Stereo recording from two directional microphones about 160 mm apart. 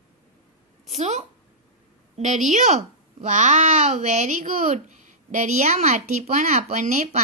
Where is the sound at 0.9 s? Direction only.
45° right (ahead or behind).